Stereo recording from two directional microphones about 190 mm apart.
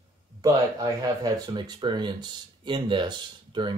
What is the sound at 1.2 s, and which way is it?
Speech, 20° right (ahead or behind).